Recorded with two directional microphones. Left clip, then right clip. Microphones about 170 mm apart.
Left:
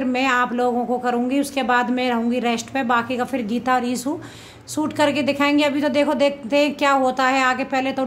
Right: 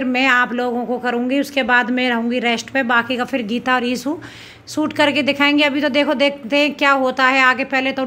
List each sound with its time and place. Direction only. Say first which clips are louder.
0.0 s a woman's voice: right 4 dB; 10° right (ahead or behind)